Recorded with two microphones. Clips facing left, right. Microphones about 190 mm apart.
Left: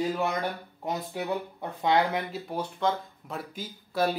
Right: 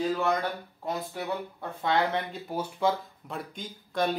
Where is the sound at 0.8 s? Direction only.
20° left (ahead or behind).